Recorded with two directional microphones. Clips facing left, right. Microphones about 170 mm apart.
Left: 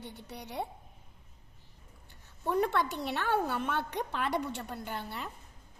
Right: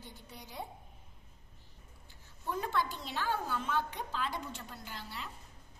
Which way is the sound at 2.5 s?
70° left (ahead or behind).